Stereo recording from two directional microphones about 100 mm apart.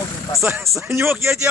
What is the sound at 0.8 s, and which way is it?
Speech, 25° right (ahead or behind).